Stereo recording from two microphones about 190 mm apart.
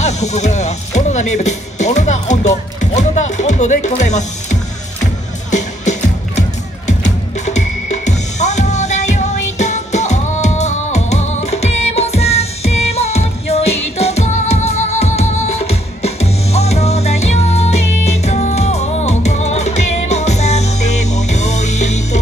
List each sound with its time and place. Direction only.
0.0 s speech: 35° left (ahead or behind)
5.0 s music: 40° left (ahead or behind)